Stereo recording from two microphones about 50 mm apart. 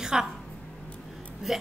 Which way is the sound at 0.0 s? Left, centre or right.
Centre.